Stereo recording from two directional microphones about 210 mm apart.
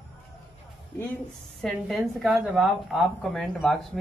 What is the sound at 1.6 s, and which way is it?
A woman's voice, centre (ahead or behind).